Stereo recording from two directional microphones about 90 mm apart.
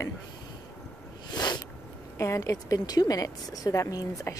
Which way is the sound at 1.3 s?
55° left (ahead or behind).